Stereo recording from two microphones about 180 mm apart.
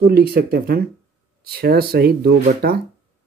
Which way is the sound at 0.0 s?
60° right (ahead or behind).